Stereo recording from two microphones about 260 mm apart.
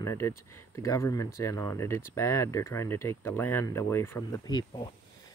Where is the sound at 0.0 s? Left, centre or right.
Centre.